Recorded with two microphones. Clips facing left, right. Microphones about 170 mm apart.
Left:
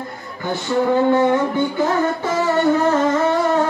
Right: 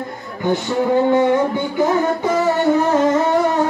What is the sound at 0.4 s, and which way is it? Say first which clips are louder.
Music: right 2 dB; 15° right (ahead or behind).